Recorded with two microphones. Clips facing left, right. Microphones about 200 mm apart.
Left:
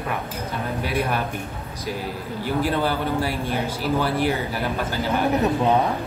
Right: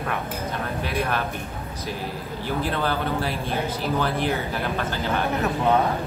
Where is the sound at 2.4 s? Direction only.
10° left (ahead or behind).